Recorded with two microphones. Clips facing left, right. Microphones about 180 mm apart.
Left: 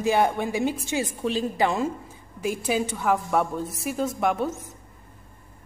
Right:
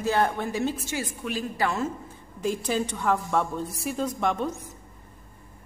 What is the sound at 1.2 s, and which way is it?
Speech, 30° left (ahead or behind).